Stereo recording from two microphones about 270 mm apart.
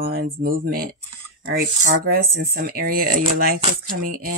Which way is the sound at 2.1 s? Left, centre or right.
Right.